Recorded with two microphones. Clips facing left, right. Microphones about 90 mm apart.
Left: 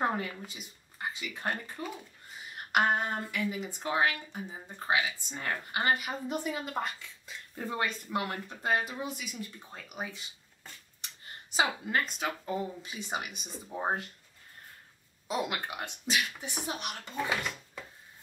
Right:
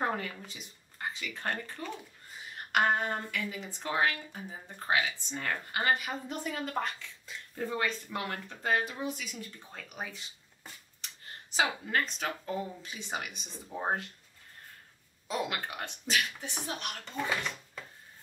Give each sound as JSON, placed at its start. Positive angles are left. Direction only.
{"t": 0.0, "sound": "speech", "side_deg": 15}
{"t": 11.5, "sound": "speech", "side_deg": 15}
{"t": 15.2, "sound": "speech", "side_deg": 15}